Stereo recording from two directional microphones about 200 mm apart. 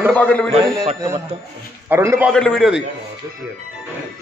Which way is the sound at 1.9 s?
15° right (ahead or behind).